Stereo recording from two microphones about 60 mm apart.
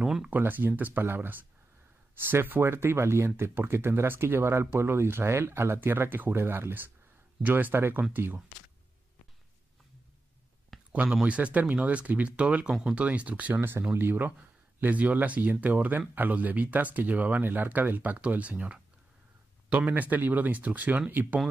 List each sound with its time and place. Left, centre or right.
0.0 s a sound: centre
0.3 s speech: right
10.9 s speech: right
13.6 s speech: right